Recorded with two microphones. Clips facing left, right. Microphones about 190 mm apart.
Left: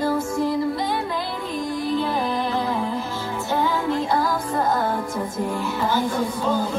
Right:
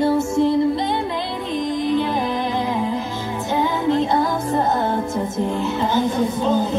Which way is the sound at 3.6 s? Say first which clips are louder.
Right 5 dB; 20° right (ahead or behind).